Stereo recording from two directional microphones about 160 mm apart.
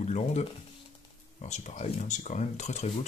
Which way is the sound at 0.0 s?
45° left (ahead or behind).